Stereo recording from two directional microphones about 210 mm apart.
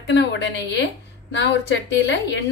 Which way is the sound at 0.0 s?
55° left (ahead or behind).